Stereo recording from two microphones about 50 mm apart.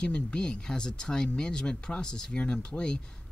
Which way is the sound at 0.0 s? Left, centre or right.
Centre.